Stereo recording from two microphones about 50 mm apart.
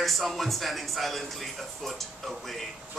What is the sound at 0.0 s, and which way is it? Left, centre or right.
Speech, centre.